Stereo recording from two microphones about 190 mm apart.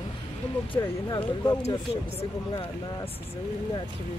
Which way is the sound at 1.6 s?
35° left (ahead or behind).